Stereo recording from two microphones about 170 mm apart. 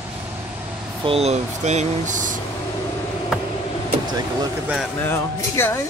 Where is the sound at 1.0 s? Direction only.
35° right (ahead or behind).